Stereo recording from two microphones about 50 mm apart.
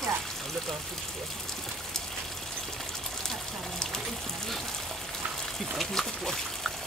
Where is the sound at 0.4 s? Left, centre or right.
Centre.